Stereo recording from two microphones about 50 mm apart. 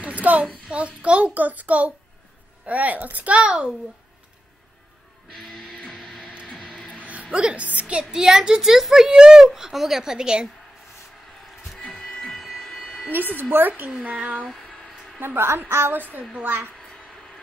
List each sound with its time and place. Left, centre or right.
0.0 s a sound: right
0.7 s a child's voice: right
5.9 s music: centre
7.1 s a woman's voice: right
7.8 s a child's voice: centre
12.3 s a sound: centre
13.1 s speech: right
15.1 s a woman's voice: right
16.0 s speech: right